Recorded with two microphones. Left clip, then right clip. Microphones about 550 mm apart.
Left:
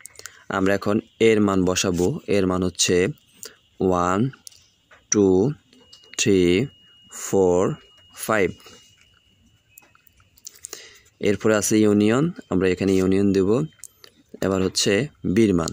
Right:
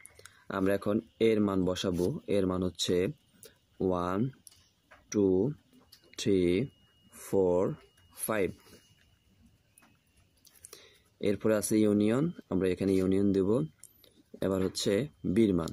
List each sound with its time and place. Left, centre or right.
0.2 s speech: right
10.4 s speech: right